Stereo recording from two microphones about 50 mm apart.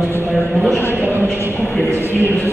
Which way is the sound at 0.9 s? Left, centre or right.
Right.